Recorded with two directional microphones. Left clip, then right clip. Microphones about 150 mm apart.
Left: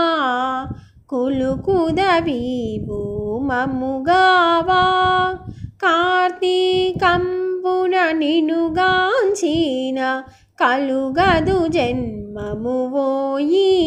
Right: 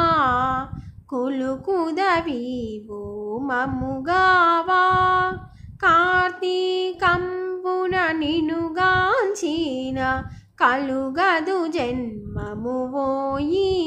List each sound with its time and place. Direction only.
0.0 s a sound: 15° left (ahead or behind)
1.1 s music: 10° left (ahead or behind)
7.2 s child singing: 5° left (ahead or behind)
7.6 s music: 15° left (ahead or behind)